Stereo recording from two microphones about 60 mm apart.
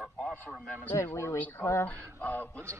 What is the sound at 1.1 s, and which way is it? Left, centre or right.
Speech, left.